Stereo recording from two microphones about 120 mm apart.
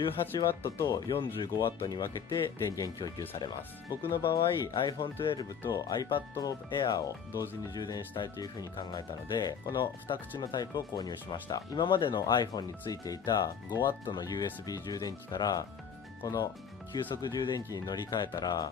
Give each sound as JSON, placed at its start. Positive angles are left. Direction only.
{"t": 0.7, "sound": "speech", "side_deg": 30}
{"t": 4.2, "sound": "speech", "side_deg": 45}